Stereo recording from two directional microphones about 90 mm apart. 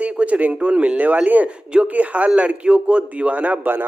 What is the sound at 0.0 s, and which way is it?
A man's voice, 15° right (ahead or behind).